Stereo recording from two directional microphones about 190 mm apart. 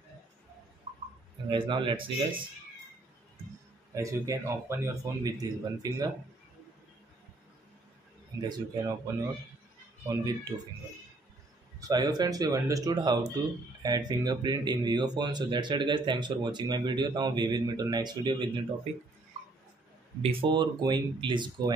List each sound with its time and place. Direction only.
1.5 s speech: 25° right (ahead or behind)
3.9 s a man's voice: 15° right (ahead or behind)
8.4 s speech: 20° right (ahead or behind)
11.9 s speech: 20° right (ahead or behind)
20.2 s speech: 30° right (ahead or behind)